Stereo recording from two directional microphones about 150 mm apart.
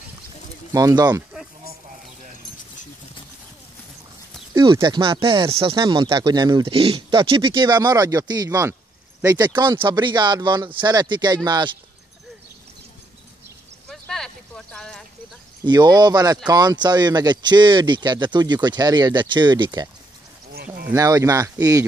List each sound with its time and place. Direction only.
0.7 s speech: 25° right (ahead or behind)
4.6 s speech: 30° right (ahead or behind)
13.8 s a sound: 5° left (ahead or behind)
15.6 s speech: 30° right (ahead or behind)
20.9 s speech: 25° right (ahead or behind)